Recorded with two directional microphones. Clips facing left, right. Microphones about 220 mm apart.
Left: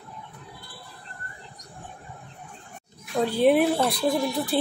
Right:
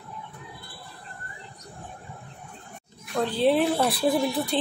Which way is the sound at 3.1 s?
10° left (ahead or behind).